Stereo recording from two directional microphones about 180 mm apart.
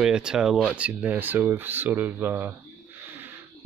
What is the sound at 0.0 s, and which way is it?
Speech, 5° right (ahead or behind).